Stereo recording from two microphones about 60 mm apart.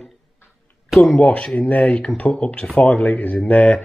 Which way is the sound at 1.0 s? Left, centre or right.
Centre.